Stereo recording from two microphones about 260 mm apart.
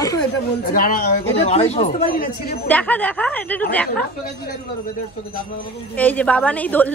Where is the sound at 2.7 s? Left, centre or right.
Centre.